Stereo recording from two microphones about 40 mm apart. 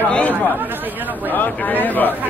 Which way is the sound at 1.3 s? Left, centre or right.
Left.